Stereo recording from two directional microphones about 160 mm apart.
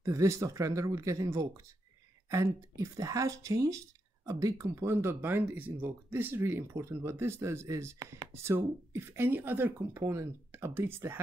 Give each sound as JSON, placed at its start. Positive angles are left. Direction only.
{"t": 0.0, "sound": "speech", "side_deg": -20}